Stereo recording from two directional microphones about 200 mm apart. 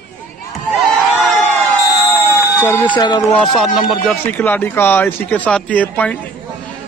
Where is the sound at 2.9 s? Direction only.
20° left (ahead or behind).